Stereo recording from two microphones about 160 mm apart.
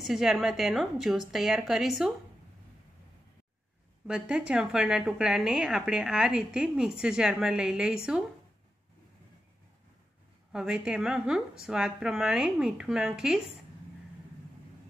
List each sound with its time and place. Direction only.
0.0 s a woman's voice: centre (ahead or behind)
4.1 s a woman's voice: 5° right (ahead or behind)
10.5 s a woman's voice: 5° right (ahead or behind)